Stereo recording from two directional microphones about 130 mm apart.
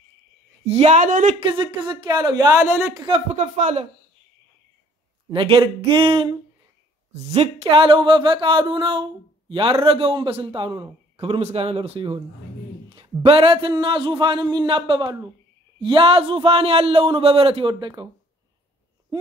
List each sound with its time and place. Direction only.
0.7 s speech: 55° right (ahead or behind); by 1.3 s 85° right
1.5 s a man's voice: 35° right (ahead or behind); by 2.9 s 20° right (ahead or behind)
3.1 s speech: 60° right (ahead or behind)
5.3 s a man's voice: 40° right (ahead or behind)
7.1 s a man's voice: 60° right (ahead or behind); by 18.0 s 35° right (ahead or behind)